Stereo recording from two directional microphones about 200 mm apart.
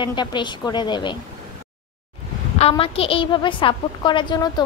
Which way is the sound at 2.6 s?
30° left (ahead or behind).